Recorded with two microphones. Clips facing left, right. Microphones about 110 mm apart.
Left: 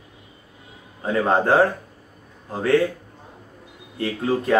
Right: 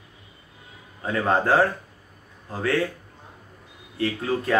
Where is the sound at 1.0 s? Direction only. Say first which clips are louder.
Left 3 dB; 25° left (ahead or behind).